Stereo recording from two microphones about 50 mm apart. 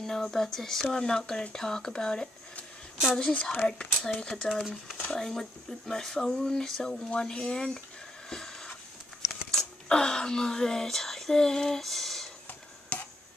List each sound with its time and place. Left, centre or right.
0.0 s speech: centre
8.3 s a sound: centre
9.5 s speech: centre
12.9 s tick-tock: left